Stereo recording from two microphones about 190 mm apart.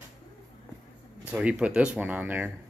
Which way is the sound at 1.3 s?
5° right (ahead or behind).